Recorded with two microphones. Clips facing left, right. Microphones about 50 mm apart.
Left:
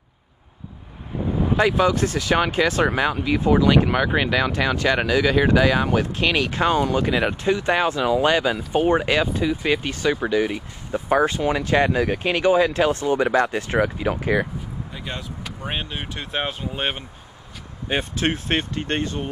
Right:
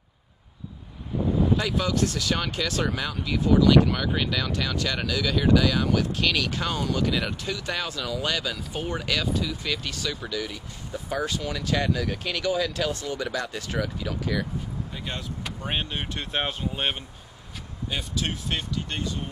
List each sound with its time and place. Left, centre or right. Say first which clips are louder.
1.5 s speech: left 7 dB; left
15.7 s speech: even; centre
17.8 s speech: left 7 dB; left